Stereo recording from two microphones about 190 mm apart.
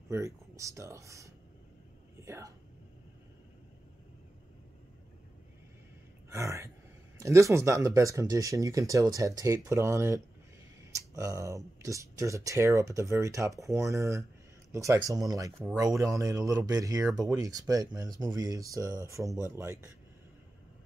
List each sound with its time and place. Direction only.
0.1 s speech: 15° right (ahead or behind)
6.3 s speech: 15° right (ahead or behind)